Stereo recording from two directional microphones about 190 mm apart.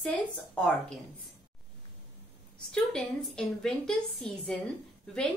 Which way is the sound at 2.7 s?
5° left (ahead or behind).